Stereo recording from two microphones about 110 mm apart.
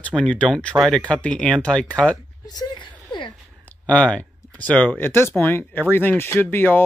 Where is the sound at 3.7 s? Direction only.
10° left (ahead or behind).